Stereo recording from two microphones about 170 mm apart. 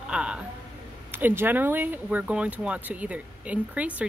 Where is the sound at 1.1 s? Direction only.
15° right (ahead or behind).